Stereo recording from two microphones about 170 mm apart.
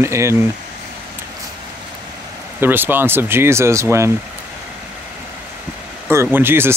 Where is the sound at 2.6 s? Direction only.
10° right (ahead or behind).